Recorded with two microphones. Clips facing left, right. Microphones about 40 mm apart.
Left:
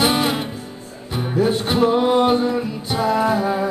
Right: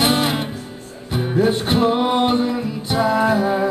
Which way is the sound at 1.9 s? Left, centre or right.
Right.